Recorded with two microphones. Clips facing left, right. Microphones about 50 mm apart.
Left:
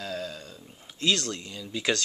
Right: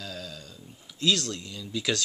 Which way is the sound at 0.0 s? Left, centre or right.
Left.